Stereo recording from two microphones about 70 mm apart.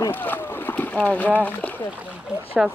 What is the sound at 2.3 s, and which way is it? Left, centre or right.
Boat, centre.